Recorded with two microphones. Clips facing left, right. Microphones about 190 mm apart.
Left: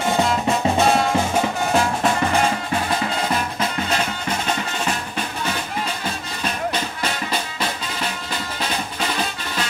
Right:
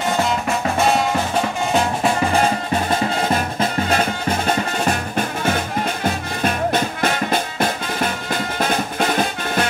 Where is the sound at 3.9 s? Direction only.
50° right (ahead or behind).